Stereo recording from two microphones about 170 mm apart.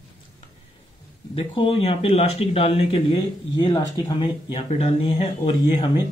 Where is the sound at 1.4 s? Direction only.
30° left (ahead or behind).